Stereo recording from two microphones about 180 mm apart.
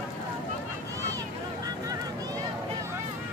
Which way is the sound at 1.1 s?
20° right (ahead or behind).